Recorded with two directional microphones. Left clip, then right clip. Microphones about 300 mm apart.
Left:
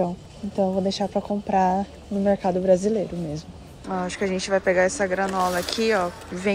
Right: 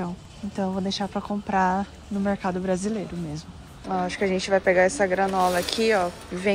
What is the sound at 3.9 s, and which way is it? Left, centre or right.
Speech, centre.